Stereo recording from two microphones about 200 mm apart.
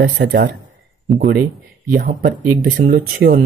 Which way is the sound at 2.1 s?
45° right (ahead or behind).